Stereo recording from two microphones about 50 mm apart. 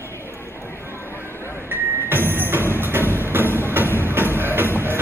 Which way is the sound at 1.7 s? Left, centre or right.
Right.